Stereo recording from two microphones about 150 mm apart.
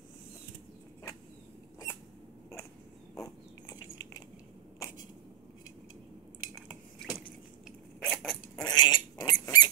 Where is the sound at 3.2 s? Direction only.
25° left (ahead or behind).